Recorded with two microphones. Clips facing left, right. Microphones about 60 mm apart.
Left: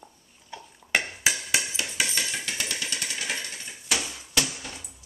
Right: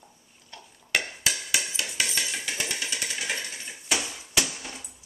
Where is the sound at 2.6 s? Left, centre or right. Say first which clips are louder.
Even; centre.